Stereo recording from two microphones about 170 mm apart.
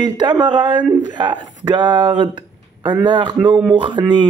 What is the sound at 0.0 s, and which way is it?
Speech, 25° right (ahead or behind).